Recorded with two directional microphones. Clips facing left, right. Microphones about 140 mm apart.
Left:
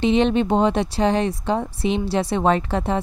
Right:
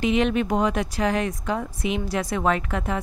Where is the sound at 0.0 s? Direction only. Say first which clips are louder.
Left 4 dB; 30° left (ahead or behind).